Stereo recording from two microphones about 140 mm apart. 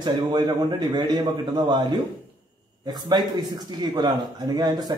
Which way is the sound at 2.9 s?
30° right (ahead or behind).